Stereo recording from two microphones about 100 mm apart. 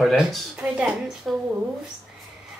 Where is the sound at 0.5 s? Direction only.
15° right (ahead or behind).